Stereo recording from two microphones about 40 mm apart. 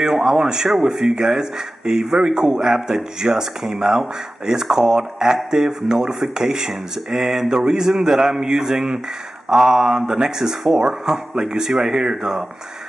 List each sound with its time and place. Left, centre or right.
0.0 s speech: centre
11.8 s speech: right
12.1 s speech: centre